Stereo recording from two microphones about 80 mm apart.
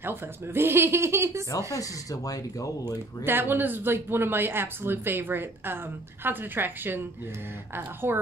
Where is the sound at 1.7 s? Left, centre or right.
Left.